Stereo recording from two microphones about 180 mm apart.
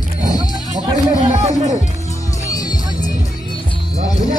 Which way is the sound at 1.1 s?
40° right (ahead or behind).